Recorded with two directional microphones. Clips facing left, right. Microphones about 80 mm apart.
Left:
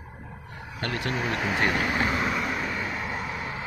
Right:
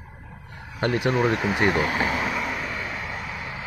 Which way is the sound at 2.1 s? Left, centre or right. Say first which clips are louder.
Even; centre.